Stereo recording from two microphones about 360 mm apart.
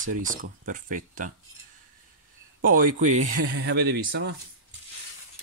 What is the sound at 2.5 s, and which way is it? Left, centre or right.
Speech, right.